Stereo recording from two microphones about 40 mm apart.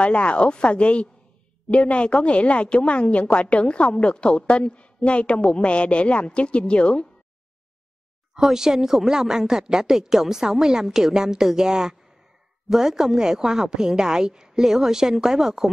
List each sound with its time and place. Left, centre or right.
0.0 s speech: left
8.4 s a woman's voice: centre